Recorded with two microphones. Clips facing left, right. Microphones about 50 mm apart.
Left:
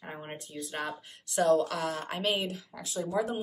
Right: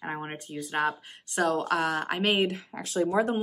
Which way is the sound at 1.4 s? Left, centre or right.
Right.